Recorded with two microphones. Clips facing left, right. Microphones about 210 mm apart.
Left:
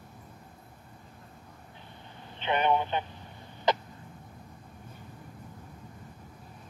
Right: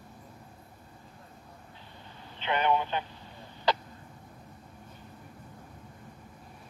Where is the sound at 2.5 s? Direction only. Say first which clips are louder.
Left 1 dB; 20° left (ahead or behind).